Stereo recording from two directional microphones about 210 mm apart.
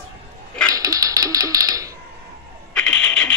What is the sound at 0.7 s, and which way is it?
Music, 15° right (ahead or behind).